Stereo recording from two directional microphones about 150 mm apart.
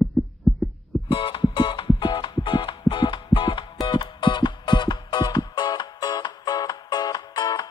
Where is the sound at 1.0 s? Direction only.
35° left (ahead or behind).